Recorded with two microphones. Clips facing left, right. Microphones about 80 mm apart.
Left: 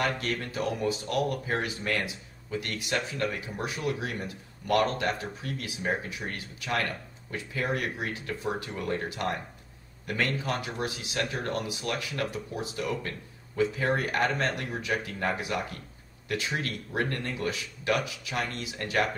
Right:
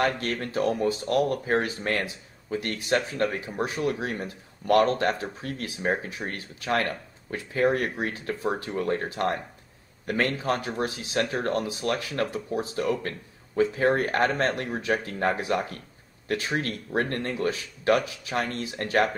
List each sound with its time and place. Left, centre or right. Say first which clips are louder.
0.0 s speech: right 4 dB; right